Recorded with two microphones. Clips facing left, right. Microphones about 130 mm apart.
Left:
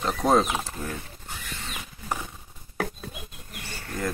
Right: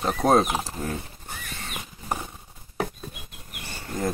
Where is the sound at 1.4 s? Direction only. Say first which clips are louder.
Left 1 dB; 55° right (ahead or behind).